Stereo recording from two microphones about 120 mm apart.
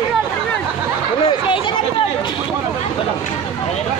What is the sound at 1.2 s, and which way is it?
Speech, 45° left (ahead or behind).